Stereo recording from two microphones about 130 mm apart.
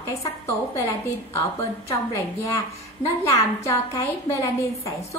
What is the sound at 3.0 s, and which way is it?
A woman's voice, 25° left (ahead or behind).